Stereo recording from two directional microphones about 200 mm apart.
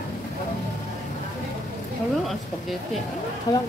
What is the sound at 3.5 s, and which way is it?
Speech, 20° left (ahead or behind).